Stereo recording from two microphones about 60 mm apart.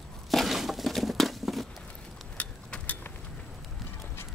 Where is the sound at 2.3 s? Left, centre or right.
Left.